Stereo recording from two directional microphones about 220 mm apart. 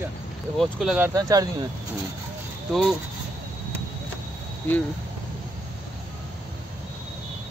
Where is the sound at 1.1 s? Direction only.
15° right (ahead or behind).